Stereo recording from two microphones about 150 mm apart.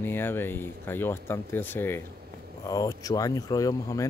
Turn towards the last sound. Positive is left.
turn(degrees=25)  # may be behind; listen again after turning